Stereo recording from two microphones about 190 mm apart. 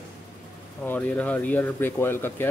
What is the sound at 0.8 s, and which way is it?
Speech, 10° left (ahead or behind).